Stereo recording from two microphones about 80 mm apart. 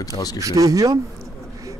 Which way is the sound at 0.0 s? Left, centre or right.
Left.